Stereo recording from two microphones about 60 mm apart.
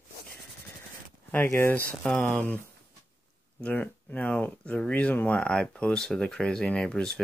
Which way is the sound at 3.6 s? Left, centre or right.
Left.